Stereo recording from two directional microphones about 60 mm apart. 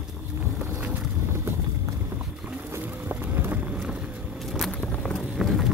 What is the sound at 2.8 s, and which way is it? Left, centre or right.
Run, right.